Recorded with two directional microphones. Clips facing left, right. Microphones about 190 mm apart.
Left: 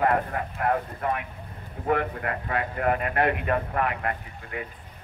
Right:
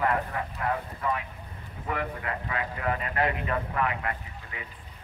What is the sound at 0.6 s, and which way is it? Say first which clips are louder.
Speech: left 5 dB; 50° left (ahead or behind).